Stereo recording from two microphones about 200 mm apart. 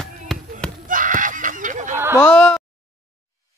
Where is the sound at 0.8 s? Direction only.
40° right (ahead or behind).